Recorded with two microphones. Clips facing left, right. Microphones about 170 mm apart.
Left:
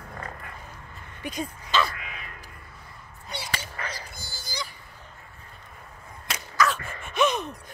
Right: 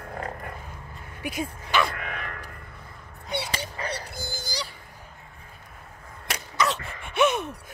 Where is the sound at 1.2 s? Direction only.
10° right (ahead or behind).